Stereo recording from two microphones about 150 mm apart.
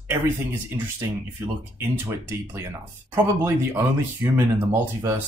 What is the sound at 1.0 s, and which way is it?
Speech, 15° right (ahead or behind).